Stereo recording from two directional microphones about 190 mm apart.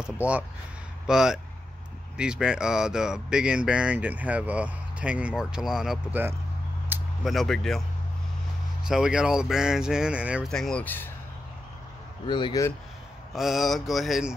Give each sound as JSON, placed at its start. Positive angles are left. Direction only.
{"t": 0.0, "sound": "speech", "side_deg": -5}
{"t": 8.8, "sound": "speech", "side_deg": -5}
{"t": 12.3, "sound": "speech", "side_deg": 25}
{"t": 13.3, "sound": "speech", "side_deg": 0}